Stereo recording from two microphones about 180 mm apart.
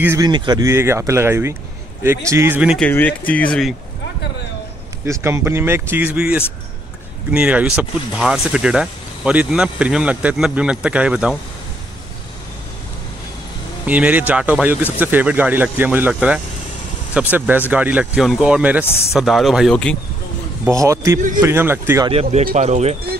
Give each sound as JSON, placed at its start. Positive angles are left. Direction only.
{"t": 0.0, "sound": "speech", "side_deg": -15}
{"t": 2.8, "sound": "speech", "side_deg": 10}
{"t": 5.2, "sound": "speech", "side_deg": -15}
{"t": 13.8, "sound": "speech", "side_deg": -10}
{"t": 20.6, "sound": "speech", "side_deg": -15}
{"t": 22.0, "sound": "speech", "side_deg": -35}